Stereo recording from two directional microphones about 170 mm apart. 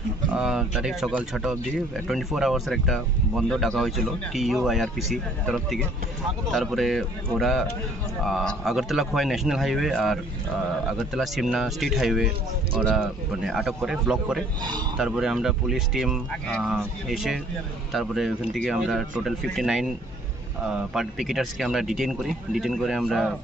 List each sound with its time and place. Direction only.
0.3 s speech: 5° right (ahead or behind)